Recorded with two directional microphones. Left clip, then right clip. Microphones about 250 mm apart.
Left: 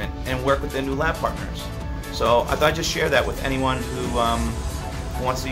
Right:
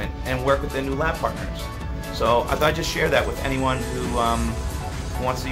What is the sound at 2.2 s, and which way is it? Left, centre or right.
Speech, centre.